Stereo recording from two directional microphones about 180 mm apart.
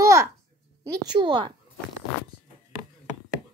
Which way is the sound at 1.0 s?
25° right (ahead or behind).